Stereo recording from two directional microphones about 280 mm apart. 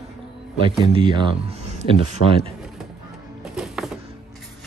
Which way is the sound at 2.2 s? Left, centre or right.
Left.